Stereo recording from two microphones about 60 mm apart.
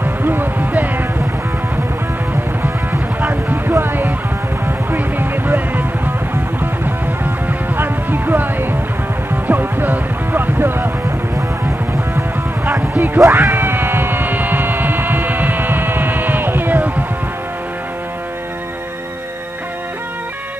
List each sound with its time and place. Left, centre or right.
0.0 s music: right
2.6 s music: right
12.6 s music: right